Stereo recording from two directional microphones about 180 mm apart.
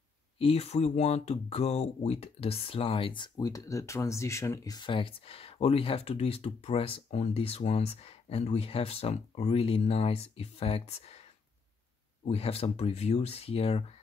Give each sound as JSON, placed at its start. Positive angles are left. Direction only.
{"t": 0.4, "sound": "speech", "side_deg": 35}
{"t": 12.3, "sound": "speech", "side_deg": 35}